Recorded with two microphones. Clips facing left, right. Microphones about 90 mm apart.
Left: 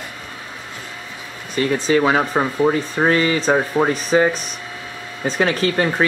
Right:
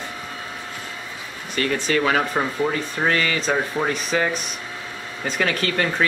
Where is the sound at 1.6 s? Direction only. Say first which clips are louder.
Left 5 dB; 20° left (ahead or behind).